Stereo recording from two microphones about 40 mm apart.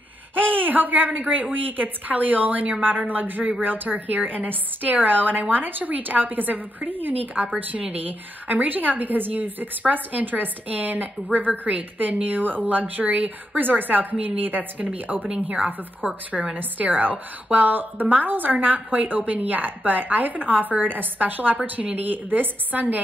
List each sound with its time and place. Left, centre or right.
0.3 s a woman's voice: right
13.6 s a woman's voice: right
15.4 s a woman's voice: right